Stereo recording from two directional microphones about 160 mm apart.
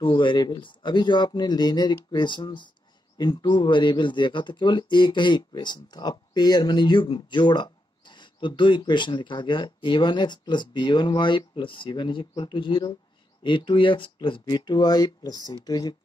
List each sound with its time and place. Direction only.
0.0 s speech: 30° left (ahead or behind)